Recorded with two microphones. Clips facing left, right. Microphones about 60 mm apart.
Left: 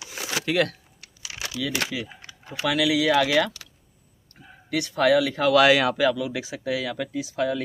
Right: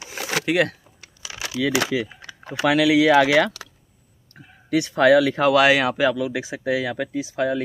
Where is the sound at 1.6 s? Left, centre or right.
Right.